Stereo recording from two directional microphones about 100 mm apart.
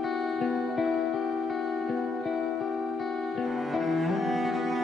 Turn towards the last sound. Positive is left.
turn(degrees=0)  # may be behind; listen again after turning